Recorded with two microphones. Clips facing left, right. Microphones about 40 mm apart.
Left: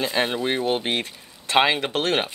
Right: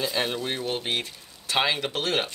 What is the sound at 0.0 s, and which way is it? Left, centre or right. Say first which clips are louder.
Speech: left 4 dB; left.